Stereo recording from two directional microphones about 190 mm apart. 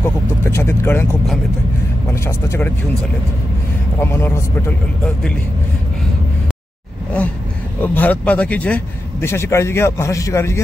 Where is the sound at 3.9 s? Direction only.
15° left (ahead or behind).